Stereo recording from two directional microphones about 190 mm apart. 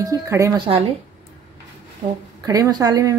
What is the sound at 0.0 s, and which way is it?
Speech, 15° right (ahead or behind).